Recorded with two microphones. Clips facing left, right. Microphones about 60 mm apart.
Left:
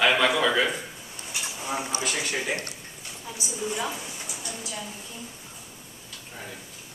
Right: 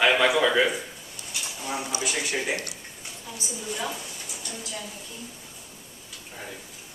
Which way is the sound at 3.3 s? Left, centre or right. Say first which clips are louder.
Left 3 dB; centre.